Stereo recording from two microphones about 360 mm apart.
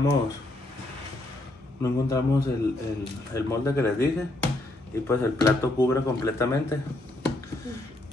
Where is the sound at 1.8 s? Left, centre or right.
Centre.